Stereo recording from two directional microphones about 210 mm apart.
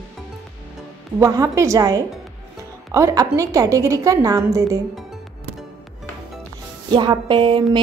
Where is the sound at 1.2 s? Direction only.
15° right (ahead or behind).